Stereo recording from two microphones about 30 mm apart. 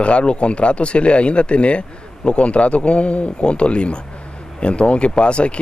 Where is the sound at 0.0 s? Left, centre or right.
Left.